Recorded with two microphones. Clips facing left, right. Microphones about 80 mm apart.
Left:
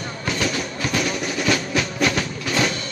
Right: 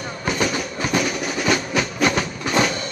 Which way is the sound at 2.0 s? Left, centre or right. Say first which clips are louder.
Right 1 dB; right.